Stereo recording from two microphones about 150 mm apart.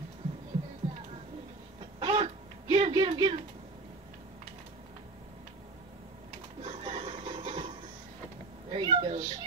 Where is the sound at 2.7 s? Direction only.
40° right (ahead or behind).